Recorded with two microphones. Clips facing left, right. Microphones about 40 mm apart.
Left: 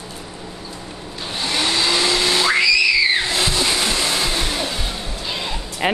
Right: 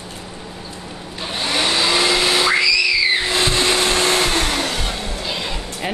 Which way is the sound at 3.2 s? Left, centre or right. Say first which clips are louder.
Right 2 dB; right.